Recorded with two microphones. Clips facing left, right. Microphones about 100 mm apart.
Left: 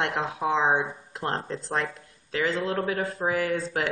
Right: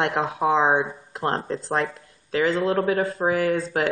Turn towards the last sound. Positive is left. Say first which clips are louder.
# right 5 dB
turn(degrees=0)  # may be behind; listen again after turning